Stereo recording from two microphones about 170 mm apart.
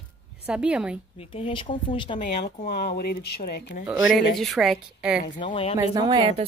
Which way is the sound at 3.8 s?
5° right (ahead or behind).